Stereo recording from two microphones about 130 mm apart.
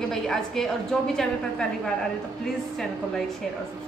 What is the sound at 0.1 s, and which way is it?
Speech, 5° left (ahead or behind).